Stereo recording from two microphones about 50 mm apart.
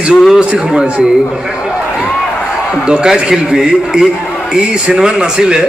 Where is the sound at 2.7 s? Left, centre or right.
Centre.